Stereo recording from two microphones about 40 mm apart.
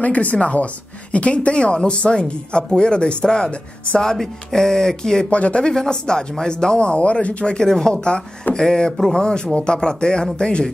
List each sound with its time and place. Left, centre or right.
0.0 s speech: left
4.0 s speech: centre
5.3 s speech: left
5.6 s speech: centre
7.5 s speech: centre